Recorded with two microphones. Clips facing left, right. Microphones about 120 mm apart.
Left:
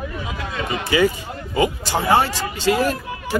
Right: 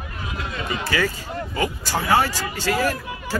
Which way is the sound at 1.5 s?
20° left (ahead or behind).